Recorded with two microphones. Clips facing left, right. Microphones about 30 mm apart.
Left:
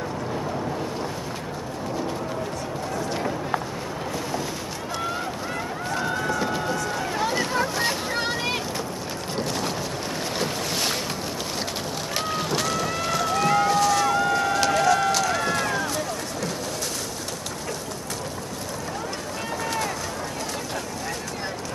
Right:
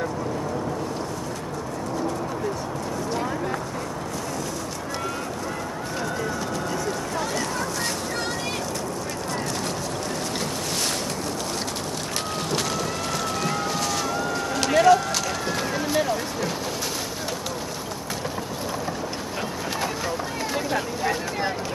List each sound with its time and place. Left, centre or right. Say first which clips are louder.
6.0 s run: left 3 dB; left
7.2 s boat: left 5 dB; left
12.4 s boat: left 1 dB; centre
15.0 s run: left 4 dB; centre
15.9 s vehicle: right 5 dB; centre